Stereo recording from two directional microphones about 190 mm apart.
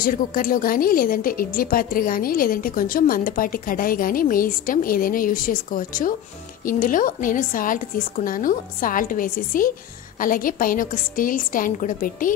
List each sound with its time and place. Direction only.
0.0 s a woman's voice: 45° left (ahead or behind)